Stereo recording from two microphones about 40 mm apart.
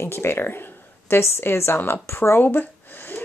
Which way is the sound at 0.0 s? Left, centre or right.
Left.